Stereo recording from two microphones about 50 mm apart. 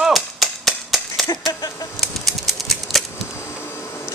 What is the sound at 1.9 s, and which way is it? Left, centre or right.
Typewriter, centre.